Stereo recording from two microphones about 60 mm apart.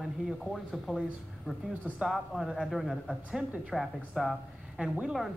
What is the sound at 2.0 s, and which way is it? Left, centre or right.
Speech, centre.